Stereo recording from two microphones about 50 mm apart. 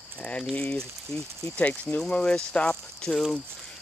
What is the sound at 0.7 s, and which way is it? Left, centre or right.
Speech, centre.